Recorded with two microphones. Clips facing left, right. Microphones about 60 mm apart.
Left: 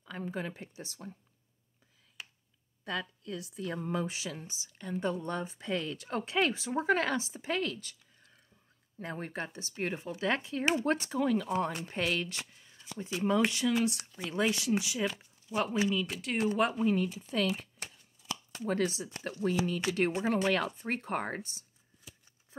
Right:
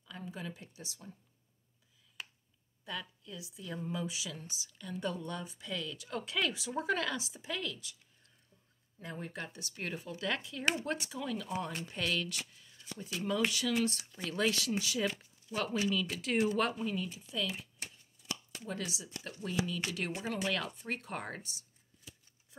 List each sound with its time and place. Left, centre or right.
0.0 s speech: left
2.2 s a sound: centre
2.8 s speech: left
9.0 s speech: left
13.8 s speech: centre
16.7 s speech: left
17.3 s speech: left
18.7 s speech: left